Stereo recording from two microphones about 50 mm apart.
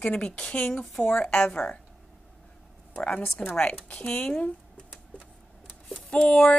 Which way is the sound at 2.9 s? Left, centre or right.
Left.